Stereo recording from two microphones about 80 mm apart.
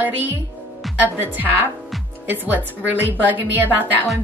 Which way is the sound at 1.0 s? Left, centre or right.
Right.